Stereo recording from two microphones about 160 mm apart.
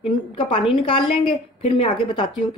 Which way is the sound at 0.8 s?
35° left (ahead or behind).